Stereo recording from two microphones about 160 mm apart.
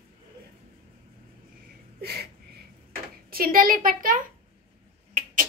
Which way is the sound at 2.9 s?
65° right (ahead or behind).